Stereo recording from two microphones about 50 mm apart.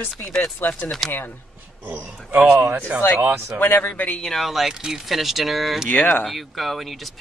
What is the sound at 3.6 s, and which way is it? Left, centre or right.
Speech, left.